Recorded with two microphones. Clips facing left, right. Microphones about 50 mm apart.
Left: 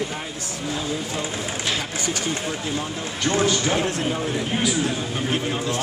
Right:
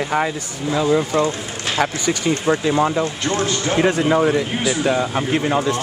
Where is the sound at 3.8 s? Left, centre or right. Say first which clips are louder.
Right 8 dB; right.